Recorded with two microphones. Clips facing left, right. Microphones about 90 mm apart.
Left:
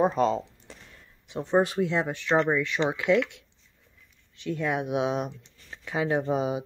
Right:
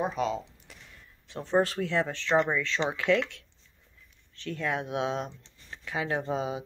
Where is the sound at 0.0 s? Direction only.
40° left (ahead or behind).